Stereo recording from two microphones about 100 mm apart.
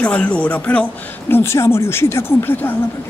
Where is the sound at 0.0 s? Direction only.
15° left (ahead or behind).